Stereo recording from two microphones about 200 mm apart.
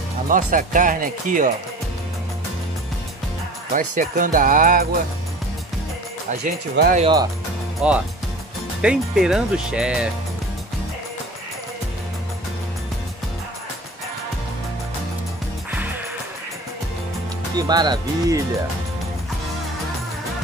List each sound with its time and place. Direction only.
0.3 s speech: 40° right (ahead or behind)
3.7 s speech: 40° right (ahead or behind)
6.4 s speech: 40° right (ahead or behind)
7.8 s speech: 5° right (ahead or behind)
17.6 s speech: 20° right (ahead or behind)